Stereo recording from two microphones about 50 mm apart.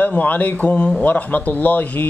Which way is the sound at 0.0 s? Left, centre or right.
Left.